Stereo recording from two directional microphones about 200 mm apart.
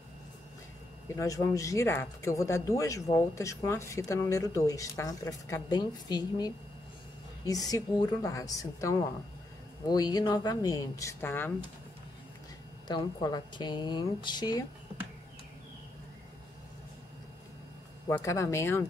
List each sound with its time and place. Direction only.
1.0 s speech: 15° left (ahead or behind)
12.8 s speech: 20° left (ahead or behind)
18.0 s speech: 15° left (ahead or behind)